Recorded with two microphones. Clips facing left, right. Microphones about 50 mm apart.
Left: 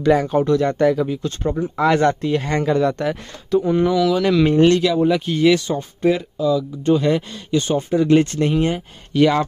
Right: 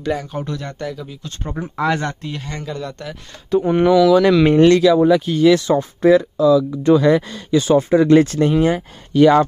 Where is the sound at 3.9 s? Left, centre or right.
Right.